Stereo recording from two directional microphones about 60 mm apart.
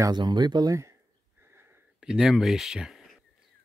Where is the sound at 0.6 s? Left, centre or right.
Right.